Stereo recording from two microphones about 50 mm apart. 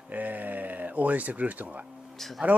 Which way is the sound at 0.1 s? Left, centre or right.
Right.